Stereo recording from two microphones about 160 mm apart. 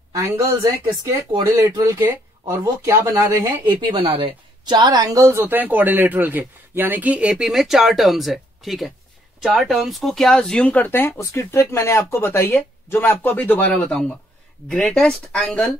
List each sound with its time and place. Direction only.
0.1 s a woman's voice: 20° right (ahead or behind)
3.8 s speech: 30° right (ahead or behind); by 15.7 s 5° left (ahead or behind)